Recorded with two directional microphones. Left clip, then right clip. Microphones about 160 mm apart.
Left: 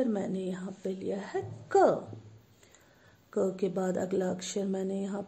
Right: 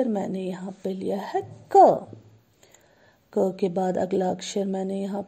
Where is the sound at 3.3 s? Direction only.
30° right (ahead or behind).